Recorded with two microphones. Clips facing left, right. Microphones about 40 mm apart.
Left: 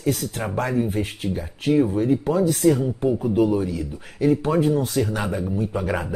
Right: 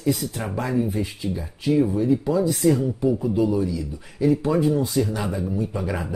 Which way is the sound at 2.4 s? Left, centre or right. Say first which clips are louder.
Left 2 dB; left.